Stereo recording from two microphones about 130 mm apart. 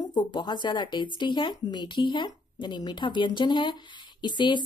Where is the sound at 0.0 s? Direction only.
35° left (ahead or behind).